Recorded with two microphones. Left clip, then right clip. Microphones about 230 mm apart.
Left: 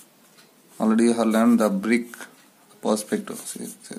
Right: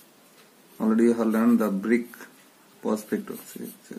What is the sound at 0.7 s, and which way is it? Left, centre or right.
Speech, left.